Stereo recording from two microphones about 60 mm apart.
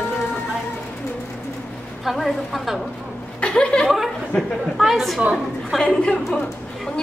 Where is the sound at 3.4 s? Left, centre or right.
Centre.